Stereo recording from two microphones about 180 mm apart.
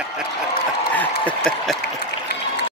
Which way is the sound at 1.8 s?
65° left (ahead or behind).